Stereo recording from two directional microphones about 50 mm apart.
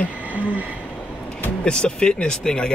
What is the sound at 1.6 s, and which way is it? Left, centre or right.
Speech, centre.